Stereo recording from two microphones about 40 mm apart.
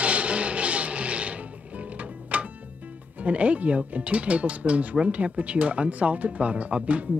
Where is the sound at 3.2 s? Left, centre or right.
Right.